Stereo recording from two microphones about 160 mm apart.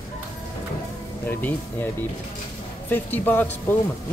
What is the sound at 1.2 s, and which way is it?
Speech, 10° left (ahead or behind).